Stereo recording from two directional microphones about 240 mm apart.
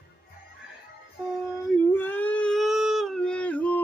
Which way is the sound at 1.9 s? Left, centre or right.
Centre.